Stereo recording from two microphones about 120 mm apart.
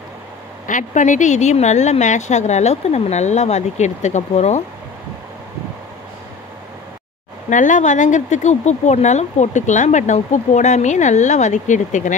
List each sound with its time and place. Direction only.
0.7 s speech: 90° left; by 4.6 s 65° left (ahead or behind)
7.4 s speech: 90° left